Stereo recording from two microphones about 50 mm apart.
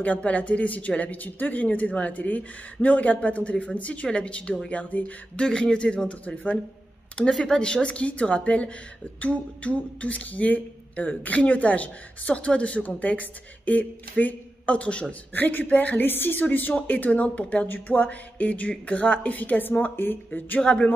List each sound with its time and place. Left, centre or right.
0.0 s speech: left
5.4 s speech: centre
7.3 s speech: centre
15.3 s speech: left
20.6 s speech: centre